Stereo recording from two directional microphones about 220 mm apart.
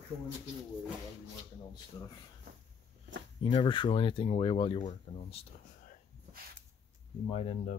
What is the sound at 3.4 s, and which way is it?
Speech, 20° left (ahead or behind).